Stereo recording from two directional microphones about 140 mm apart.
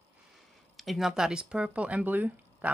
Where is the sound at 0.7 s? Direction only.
Centre (ahead or behind).